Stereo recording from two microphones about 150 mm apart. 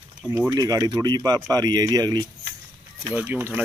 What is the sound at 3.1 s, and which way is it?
Speech, 10° right (ahead or behind).